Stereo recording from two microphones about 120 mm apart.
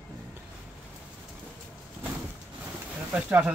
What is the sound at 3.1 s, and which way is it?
Speech, 15° right (ahead or behind).